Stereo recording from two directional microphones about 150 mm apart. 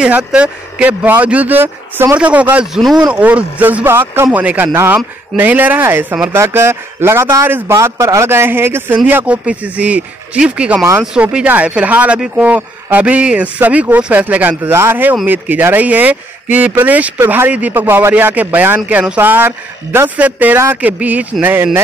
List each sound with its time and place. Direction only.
0.0 s speech: 5° right (ahead or behind)